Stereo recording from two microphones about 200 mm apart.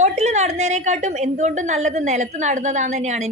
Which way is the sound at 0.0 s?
35° right (ahead or behind).